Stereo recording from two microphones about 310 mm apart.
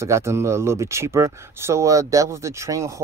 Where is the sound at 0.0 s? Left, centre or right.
Centre.